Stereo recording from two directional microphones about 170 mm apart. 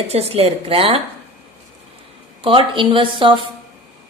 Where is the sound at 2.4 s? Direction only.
30° right (ahead or behind).